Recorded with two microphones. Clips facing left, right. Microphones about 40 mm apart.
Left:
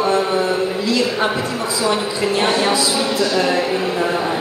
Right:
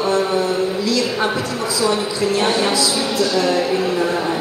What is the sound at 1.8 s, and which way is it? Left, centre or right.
Speech, left.